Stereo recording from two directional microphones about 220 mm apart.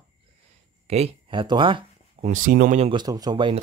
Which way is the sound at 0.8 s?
30° right (ahead or behind).